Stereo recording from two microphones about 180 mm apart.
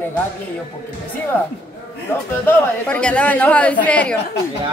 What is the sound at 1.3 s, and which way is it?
Speech, 10° left (ahead or behind).